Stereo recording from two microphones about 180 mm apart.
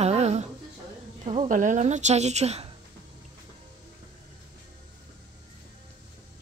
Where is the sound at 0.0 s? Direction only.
35° right (ahead or behind).